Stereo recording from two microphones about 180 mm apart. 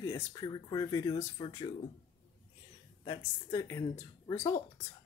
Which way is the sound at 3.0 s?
20° left (ahead or behind).